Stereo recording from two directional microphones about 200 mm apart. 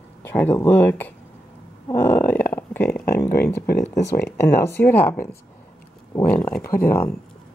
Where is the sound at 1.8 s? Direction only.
10° left (ahead or behind).